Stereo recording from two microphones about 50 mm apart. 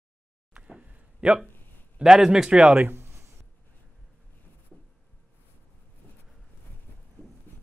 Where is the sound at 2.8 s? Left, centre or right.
Right.